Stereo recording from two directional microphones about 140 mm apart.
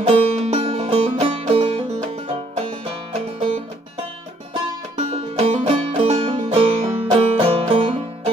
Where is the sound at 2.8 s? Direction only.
40° right (ahead or behind).